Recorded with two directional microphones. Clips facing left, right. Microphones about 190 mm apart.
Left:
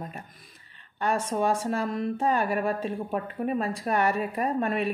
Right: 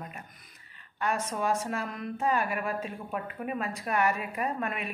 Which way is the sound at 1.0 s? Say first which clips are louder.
Left 4 dB; 30° left (ahead or behind).